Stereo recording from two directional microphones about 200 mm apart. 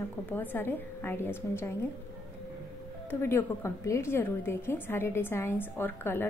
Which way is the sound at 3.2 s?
15° left (ahead or behind).